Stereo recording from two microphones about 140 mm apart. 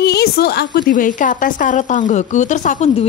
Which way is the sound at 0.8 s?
75° left (ahead or behind).